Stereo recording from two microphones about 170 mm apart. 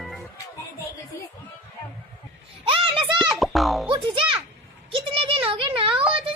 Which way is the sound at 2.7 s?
30° right (ahead or behind).